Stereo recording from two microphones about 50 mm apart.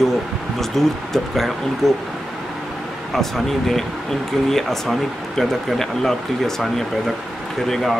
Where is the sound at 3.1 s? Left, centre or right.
Centre.